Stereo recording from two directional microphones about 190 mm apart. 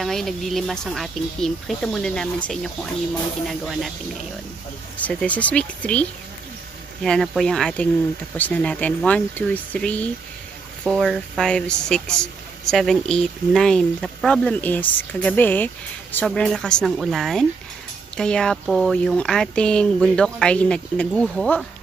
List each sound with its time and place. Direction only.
0.0 s a woman's voice: centre (ahead or behind)
4.9 s a woman's voice: 10° left (ahead or behind)